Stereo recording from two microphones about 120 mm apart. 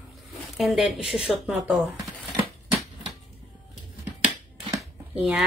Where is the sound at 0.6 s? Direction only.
Centre (ahead or behind).